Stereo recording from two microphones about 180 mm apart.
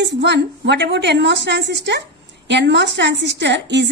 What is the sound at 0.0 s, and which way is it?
A woman's voice, 75° right (ahead or behind).